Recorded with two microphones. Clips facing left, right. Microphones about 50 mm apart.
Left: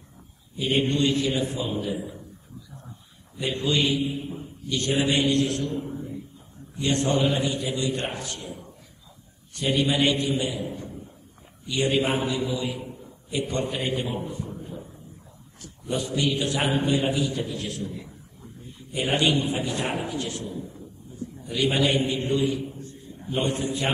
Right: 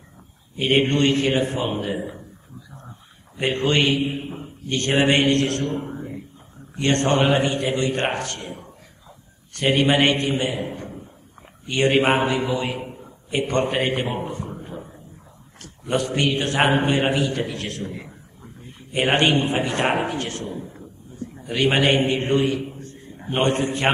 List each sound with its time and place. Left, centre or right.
0.6 s a man's voice: right
3.3 s a man's voice: right